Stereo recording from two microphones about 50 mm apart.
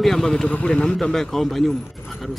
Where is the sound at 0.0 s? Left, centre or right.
Centre.